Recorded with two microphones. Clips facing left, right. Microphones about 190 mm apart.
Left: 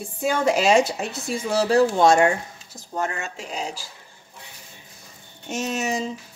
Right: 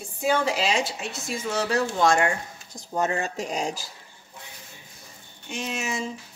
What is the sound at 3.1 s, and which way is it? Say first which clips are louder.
Speech: right 4 dB; 40° right (ahead or behind).